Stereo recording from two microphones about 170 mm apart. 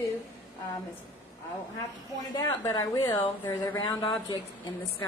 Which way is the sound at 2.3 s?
20° left (ahead or behind).